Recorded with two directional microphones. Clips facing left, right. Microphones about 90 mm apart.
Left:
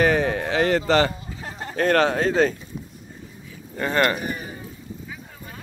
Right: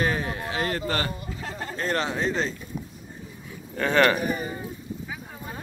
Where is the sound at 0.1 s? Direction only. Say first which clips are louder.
Left 7 dB; 85° left.